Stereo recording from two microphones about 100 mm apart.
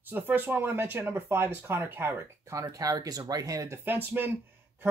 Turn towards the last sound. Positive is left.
turn(degrees=-20)  # may be behind; listen again after turning